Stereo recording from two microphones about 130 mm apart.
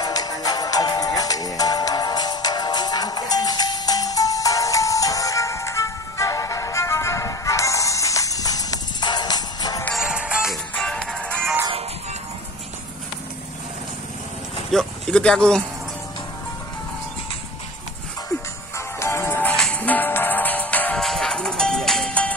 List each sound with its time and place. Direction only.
0.0 s music: 30° left (ahead or behind)
9.9 s music: 5° right (ahead or behind); by 11.5 s 10° left (ahead or behind)
14.7 s a sound: 5° left (ahead or behind)
18.9 s music: 20° left (ahead or behind)